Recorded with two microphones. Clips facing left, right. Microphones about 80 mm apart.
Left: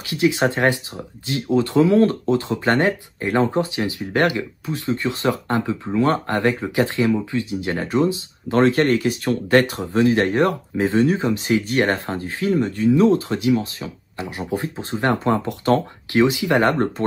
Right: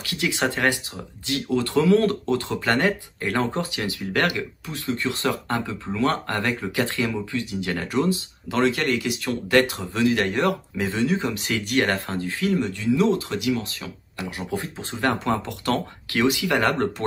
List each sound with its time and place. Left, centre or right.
0.0 s speech: left
8.5 s speech: left